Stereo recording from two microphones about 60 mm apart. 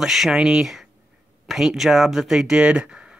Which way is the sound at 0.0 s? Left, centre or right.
Centre.